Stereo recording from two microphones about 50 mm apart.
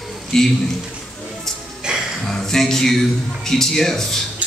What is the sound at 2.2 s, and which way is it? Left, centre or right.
Speech, centre.